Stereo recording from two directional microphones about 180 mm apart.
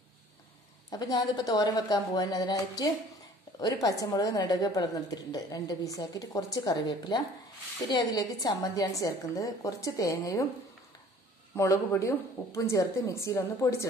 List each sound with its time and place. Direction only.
0.8 s a woman's voice: 20° left (ahead or behind)
11.5 s speech: 15° left (ahead or behind)